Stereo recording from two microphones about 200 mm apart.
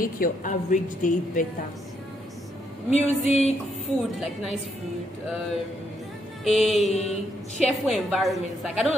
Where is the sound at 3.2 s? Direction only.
30° left (ahead or behind).